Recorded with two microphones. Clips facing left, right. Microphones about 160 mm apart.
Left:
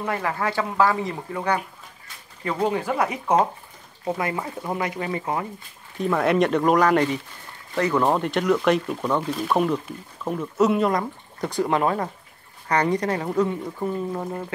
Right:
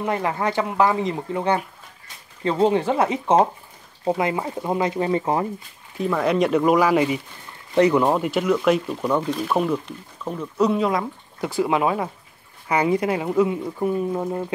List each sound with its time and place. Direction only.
0.0 s speech: 20° right (ahead or behind)
5.9 s speech: centre (ahead or behind)
7.7 s speech: 20° right (ahead or behind)
8.0 s speech: 5° right (ahead or behind)